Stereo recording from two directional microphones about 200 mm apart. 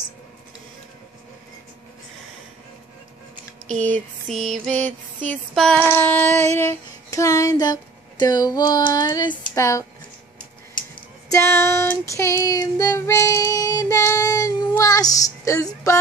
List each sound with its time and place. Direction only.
3.6 s a sound: 35° right (ahead or behind)
4.3 s music: centre (ahead or behind)
4.7 s music: 40° right (ahead or behind)
5.3 s music: 5° left (ahead or behind)
5.9 s child singing: 10° left (ahead or behind)
9.4 s speech: 15° left (ahead or behind)
11.2 s child singing: 15° left (ahead or behind)